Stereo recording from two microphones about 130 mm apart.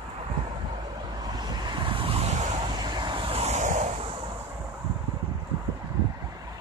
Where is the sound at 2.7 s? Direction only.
35° right (ahead or behind).